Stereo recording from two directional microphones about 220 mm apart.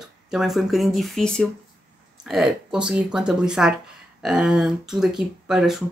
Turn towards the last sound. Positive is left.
turn(degrees=0)  # may be behind; listen again after turning